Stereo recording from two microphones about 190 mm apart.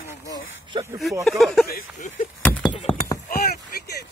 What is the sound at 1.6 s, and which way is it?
Speech, 50° left (ahead or behind).